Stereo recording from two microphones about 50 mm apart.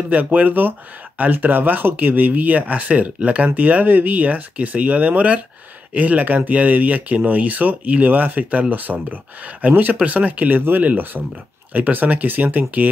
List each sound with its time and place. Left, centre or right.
0.1 s speech: right